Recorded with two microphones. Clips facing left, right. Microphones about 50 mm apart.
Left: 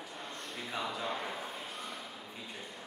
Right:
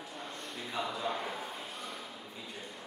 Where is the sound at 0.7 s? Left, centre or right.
Centre.